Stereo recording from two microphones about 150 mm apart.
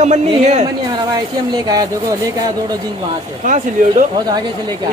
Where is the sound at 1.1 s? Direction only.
25° right (ahead or behind).